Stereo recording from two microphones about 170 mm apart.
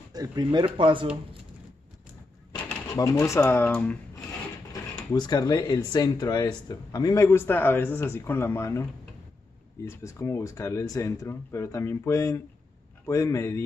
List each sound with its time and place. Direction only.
0.1 s speech: 25° right (ahead or behind)
3.0 s speech: 20° left (ahead or behind)
5.1 s speech: 25° left (ahead or behind)
9.8 s speech: 15° left (ahead or behind)